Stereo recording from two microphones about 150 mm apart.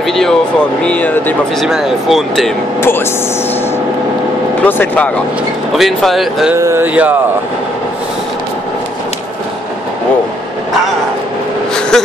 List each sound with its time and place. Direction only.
0.0 s speech: centre (ahead or behind)
1.6 s speech: centre (ahead or behind)
2.8 s speech: 15° left (ahead or behind)
4.6 s speech: 10° left (ahead or behind)
6.6 s speech: 15° right (ahead or behind)
11.9 s a sound: 5° left (ahead or behind)